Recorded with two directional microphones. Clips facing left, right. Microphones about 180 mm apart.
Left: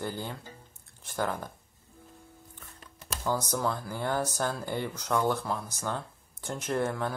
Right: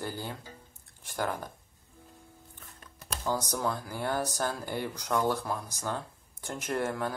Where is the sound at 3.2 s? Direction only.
15° right (ahead or behind).